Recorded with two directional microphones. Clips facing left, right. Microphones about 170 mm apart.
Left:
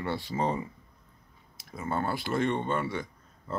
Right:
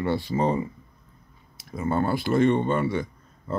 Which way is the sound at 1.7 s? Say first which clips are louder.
Right 6 dB; 15° right (ahead or behind).